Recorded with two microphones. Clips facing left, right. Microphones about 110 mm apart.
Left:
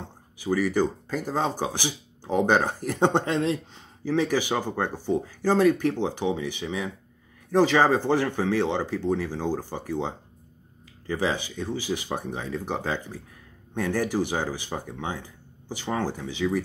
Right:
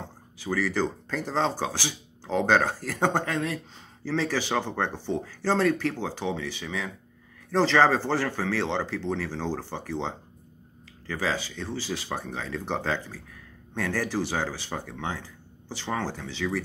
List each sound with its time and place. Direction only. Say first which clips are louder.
0.4 s speech: left 3 dB; 15° left (ahead or behind)